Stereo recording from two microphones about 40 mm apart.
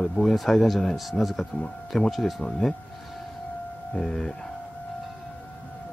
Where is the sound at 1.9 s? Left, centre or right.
Centre.